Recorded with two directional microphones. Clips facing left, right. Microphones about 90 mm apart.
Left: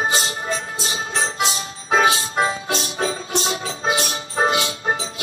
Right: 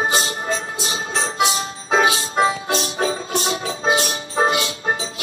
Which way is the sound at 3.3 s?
30° left (ahead or behind).